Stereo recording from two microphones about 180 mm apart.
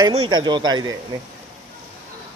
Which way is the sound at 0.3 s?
25° right (ahead or behind).